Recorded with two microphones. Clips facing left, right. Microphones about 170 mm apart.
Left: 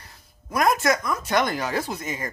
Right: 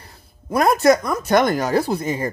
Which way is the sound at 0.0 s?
30° right (ahead or behind).